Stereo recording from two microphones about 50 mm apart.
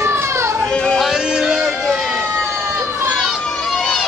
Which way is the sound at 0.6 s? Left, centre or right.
Centre.